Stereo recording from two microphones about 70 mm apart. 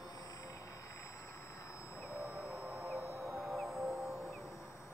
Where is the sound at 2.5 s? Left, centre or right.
Right.